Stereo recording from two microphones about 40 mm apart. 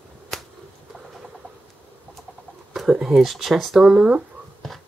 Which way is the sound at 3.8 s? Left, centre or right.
Centre.